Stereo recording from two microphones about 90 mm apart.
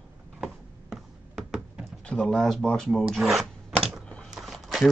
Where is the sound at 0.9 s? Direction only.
5° right (ahead or behind).